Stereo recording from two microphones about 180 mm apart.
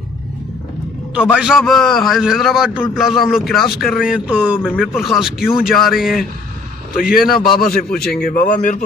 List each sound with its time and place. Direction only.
1.1 s a man's voice: 5° right (ahead or behind)
4.6 s a man's voice: 5° left (ahead or behind)
7.5 s a man's voice: 55° left (ahead or behind)
7.9 s a man's voice: 5° left (ahead or behind)
8.2 s a man's voice: 50° left (ahead or behind)